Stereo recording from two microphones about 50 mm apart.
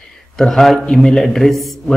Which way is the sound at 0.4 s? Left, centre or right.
Centre.